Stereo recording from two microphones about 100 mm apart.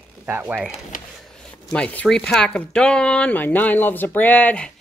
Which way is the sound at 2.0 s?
5° left (ahead or behind).